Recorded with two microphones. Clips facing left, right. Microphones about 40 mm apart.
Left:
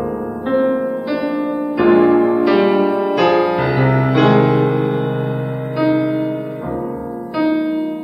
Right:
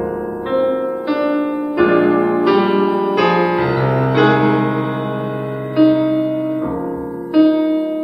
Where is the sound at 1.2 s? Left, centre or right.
Right.